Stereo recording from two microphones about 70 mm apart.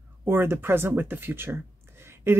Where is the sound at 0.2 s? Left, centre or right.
Right.